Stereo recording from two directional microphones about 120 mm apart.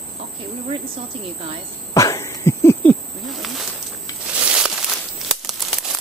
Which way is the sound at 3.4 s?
Centre (ahead or behind).